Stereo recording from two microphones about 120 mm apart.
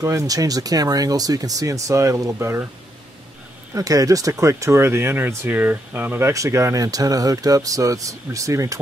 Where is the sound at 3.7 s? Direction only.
30° right (ahead or behind).